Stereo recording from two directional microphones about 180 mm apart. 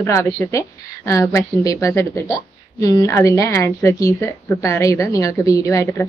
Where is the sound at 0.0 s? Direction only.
15° left (ahead or behind).